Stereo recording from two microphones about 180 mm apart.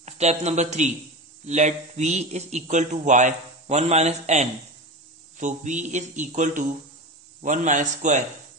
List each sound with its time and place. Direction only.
0.0 s speech: 40° right (ahead or behind)